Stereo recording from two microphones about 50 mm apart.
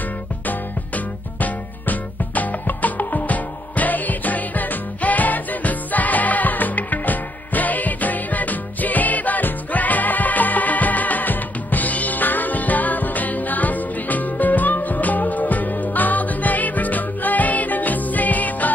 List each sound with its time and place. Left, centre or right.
0.5 s music: left